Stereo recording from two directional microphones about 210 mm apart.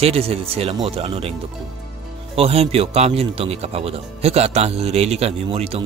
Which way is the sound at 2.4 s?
30° right (ahead or behind).